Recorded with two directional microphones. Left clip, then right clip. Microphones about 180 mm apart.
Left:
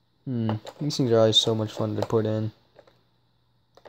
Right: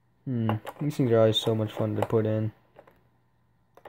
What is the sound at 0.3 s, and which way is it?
Speech, 15° left (ahead or behind).